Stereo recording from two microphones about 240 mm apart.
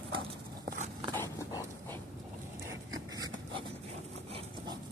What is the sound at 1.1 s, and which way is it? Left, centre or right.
Dog, centre.